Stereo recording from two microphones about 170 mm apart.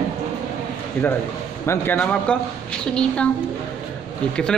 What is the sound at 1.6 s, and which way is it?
Speech, 10° left (ahead or behind).